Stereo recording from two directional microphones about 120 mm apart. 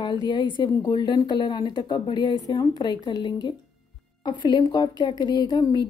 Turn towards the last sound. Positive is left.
turn(degrees=35)  # may be behind; listen again after turning